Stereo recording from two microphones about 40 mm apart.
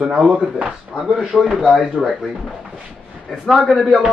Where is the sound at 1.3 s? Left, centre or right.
Centre.